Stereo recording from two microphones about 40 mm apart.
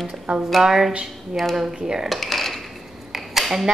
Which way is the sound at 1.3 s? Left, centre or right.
Centre.